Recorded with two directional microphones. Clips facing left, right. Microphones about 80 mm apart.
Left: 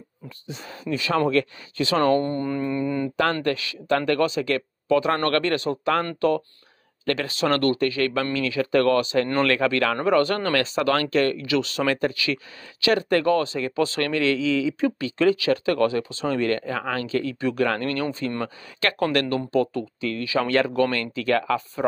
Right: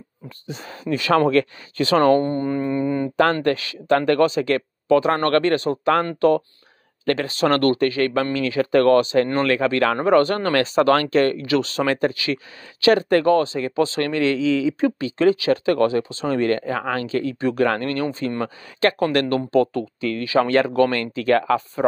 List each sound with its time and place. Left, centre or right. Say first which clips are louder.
0.5 s speech: right 4 dB; right
2.1 s speech: right 3 dB; right
3.4 s speech: right 4 dB; right
7.1 s speech: right 4 dB; right
9.3 s speech: right 2 dB; centre
9.7 s speech: right 4 dB; right
19.2 s speech: right 4 dB; right